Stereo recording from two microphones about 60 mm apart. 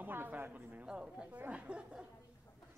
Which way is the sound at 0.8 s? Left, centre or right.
Centre.